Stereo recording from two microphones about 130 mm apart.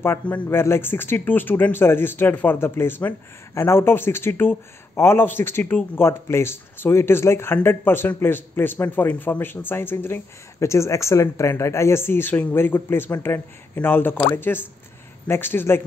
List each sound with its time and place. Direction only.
0.0 s speech: 15° left (ahead or behind)